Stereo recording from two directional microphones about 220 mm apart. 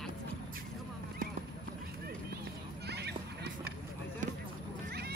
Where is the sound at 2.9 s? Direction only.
50° right (ahead or behind).